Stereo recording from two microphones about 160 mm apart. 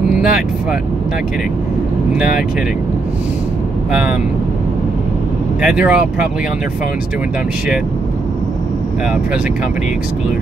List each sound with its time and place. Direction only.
5.6 s speech: 5° right (ahead or behind)